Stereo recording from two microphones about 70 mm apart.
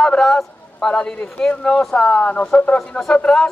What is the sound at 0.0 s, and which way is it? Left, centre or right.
A man's voice, centre.